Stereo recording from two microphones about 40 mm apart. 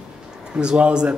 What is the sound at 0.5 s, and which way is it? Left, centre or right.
Speech, right.